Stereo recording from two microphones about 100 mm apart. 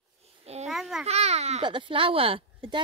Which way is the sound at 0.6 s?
Centre (ahead or behind).